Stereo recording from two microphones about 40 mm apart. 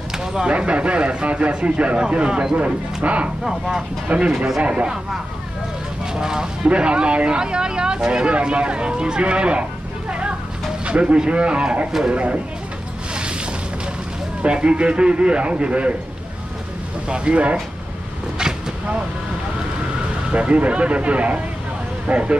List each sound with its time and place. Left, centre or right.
0.1 s a sound: centre
0.5 s speech: right
2.5 s speech: right
3.4 s speech: centre
4.1 s speech: right
6.1 s speech: centre
6.7 s speech: right
14.4 s speech: right
17.1 s speech: right
18.4 s vehicle: right
20.3 s speech: right